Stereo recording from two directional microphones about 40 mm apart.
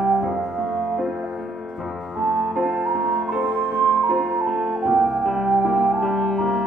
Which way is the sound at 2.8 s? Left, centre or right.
Right.